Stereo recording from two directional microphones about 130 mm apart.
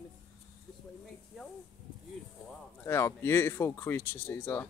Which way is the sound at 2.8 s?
20° left (ahead or behind).